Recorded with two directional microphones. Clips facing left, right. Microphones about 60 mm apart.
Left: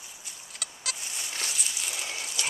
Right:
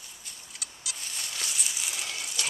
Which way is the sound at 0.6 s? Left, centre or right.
Left.